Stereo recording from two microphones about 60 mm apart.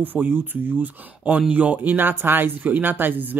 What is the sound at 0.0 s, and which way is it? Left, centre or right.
Speech, right.